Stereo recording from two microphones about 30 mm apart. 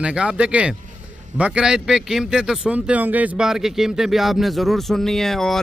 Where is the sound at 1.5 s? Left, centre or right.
Right.